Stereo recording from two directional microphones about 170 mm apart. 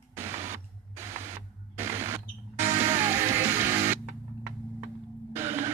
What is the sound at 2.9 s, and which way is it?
Music, 15° right (ahead or behind).